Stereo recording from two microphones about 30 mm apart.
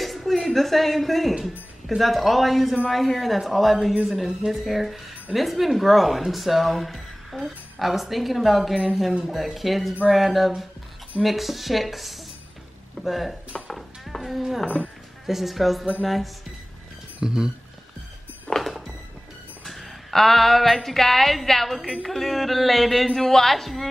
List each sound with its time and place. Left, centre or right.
0.0 s a sound: centre
2.0 s a woman's voice: centre
13.7 s a sound: centre
14.2 s a woman's voice: centre
17.2 s speech: right
18.5 s music: left
19.6 s a woman's voice: centre